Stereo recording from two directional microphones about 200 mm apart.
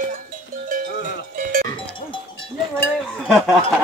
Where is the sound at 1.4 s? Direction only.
45° right (ahead or behind).